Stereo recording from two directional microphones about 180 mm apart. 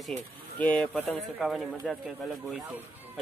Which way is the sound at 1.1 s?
Centre (ahead or behind).